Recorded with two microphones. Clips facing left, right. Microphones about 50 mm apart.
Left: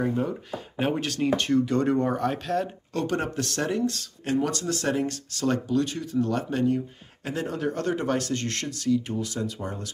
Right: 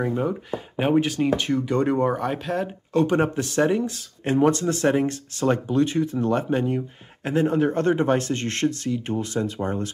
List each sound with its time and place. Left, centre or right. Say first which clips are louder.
0.0 s speech: right 2 dB; right
4.2 s speech: right 7 dB; right